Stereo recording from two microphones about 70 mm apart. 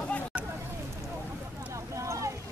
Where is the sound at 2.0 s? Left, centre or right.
Right.